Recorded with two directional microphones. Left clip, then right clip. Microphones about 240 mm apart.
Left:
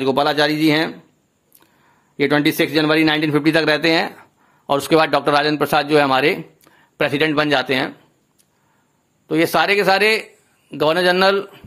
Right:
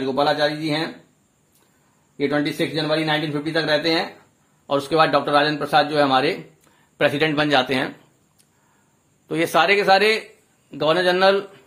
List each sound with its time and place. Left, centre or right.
0.0 s speech: left
2.1 s speech: left
9.3 s speech: centre